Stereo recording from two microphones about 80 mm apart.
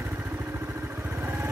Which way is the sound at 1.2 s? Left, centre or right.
Right.